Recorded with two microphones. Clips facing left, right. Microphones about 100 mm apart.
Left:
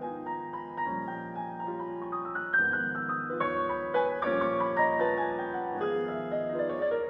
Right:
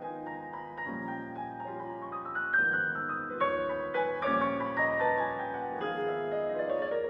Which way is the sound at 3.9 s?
30° left (ahead or behind).